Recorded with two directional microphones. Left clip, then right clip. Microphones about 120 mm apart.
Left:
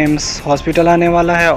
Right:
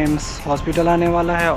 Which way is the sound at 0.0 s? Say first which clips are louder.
Left 6 dB; 30° left (ahead or behind).